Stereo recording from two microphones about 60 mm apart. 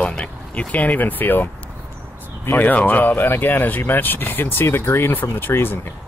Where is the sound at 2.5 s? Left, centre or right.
Left.